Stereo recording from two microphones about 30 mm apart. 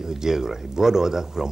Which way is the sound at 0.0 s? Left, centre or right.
Centre.